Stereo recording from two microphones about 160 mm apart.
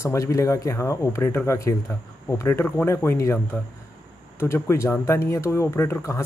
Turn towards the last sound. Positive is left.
turn(degrees=15)  # may be behind; listen again after turning